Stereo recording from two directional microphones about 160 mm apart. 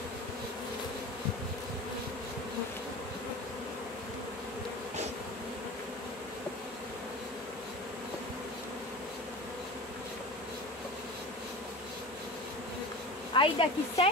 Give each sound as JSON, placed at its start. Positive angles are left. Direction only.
{"t": 13.3, "sound": "speech", "side_deg": 30}